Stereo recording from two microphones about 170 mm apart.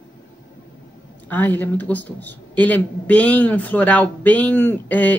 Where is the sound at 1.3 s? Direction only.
10° left (ahead or behind).